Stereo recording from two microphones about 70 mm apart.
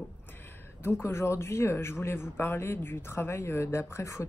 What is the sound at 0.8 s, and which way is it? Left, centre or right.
Speech, left.